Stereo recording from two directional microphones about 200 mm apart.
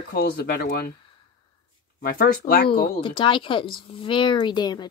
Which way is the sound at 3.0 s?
25° left (ahead or behind).